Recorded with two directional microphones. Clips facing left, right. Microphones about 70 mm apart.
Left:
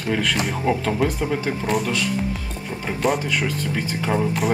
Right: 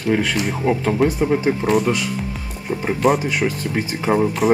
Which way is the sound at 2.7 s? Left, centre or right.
Right.